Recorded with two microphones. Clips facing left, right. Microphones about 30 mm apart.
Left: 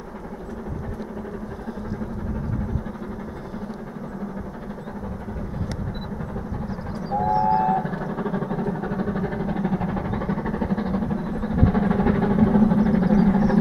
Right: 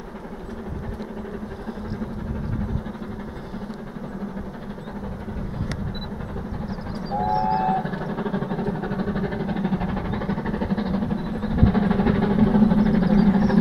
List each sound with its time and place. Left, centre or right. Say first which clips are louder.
7.1 s vehicle: left 2 dB; right